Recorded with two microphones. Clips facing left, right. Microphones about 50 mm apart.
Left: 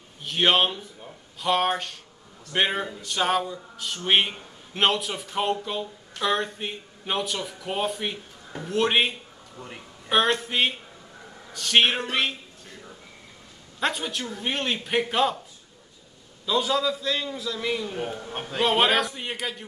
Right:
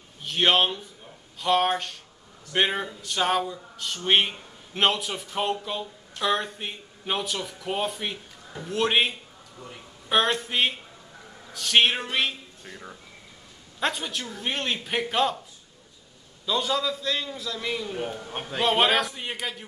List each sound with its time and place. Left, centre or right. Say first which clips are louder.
0.2 s speech: even; centre
13.7 s speech: left 1 dB; centre
16.4 s speech: left 2 dB; centre